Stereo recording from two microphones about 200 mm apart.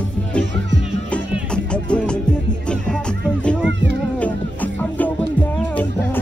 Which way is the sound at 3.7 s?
65° right (ahead or behind).